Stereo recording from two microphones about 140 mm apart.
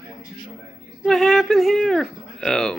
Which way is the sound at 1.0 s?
Centre (ahead or behind).